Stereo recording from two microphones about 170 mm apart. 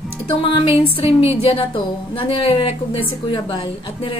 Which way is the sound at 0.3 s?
30° left (ahead or behind).